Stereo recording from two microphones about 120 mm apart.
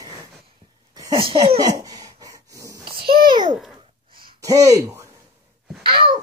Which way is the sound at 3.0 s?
40° right (ahead or behind).